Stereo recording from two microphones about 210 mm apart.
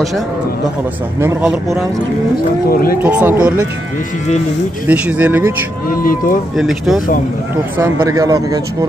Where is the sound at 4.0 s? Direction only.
35° left (ahead or behind).